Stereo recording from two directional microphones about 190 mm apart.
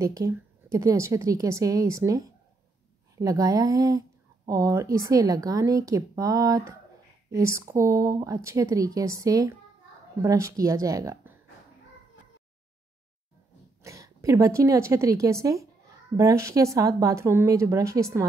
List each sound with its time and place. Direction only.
0.0 s a woman's voice: 15° right (ahead or behind)
13.8 s a woman's voice: 15° right (ahead or behind)